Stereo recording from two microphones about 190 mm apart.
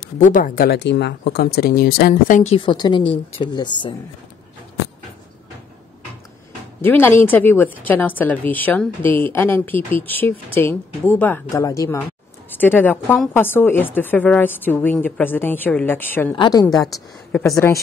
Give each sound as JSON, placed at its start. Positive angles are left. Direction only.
{"t": 0.2, "sound": "speech", "side_deg": 40}
{"t": 0.7, "sound": "a woman's voice", "side_deg": 65}
{"t": 6.8, "sound": "a woman's voice", "side_deg": 10}
{"t": 16.3, "sound": "a woman's voice", "side_deg": 20}
{"t": 16.8, "sound": "a woman's voice", "side_deg": 0}
{"t": 17.6, "sound": "a woman's voice", "side_deg": 15}